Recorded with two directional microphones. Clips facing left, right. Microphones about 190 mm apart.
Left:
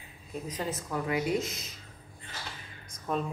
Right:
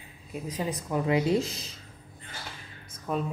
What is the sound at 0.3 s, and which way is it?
Speech, 10° right (ahead or behind).